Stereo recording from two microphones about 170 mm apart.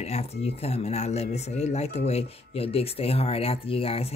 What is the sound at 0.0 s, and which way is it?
Speech, 40° left (ahead or behind).